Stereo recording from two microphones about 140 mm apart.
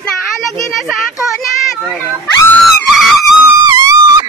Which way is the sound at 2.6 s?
Centre (ahead or behind).